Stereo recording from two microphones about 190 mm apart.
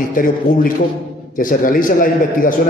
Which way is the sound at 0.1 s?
45° left (ahead or behind).